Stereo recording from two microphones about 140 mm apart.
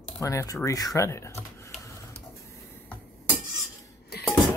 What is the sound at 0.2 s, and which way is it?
Speech, 20° left (ahead or behind).